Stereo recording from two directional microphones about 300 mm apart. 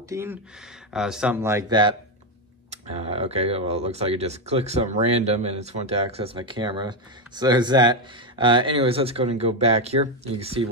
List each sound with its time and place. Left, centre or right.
0.1 s speech: centre